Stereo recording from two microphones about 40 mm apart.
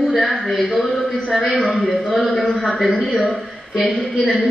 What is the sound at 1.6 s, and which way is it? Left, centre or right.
A man's voice, centre.